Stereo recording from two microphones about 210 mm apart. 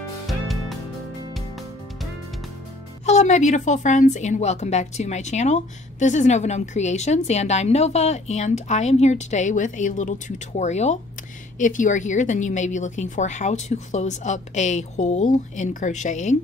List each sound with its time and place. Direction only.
0.3 s music: centre (ahead or behind)
3.1 s a woman's voice: 35° left (ahead or behind)